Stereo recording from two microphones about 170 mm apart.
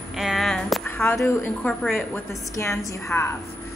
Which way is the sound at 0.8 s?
10° left (ahead or behind).